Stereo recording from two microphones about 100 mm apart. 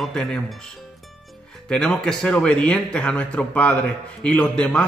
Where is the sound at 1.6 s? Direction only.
10° left (ahead or behind).